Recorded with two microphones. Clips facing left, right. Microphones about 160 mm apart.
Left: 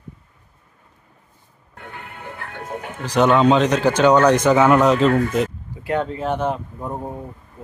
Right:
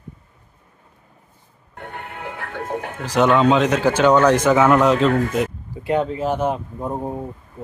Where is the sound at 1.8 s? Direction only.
55° right (ahead or behind); by 2.6 s 90° right.